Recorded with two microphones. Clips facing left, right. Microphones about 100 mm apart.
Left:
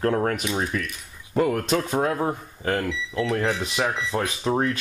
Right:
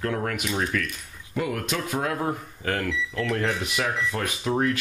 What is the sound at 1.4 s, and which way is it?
Speech, 40° left (ahead or behind).